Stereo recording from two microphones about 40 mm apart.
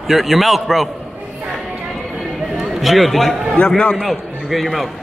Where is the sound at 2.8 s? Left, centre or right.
Centre.